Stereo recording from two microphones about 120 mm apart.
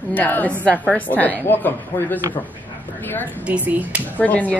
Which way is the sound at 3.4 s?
10° right (ahead or behind).